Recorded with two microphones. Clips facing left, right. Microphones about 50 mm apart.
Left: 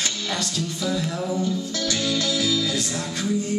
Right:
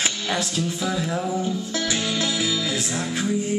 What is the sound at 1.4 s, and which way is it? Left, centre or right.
Music, right.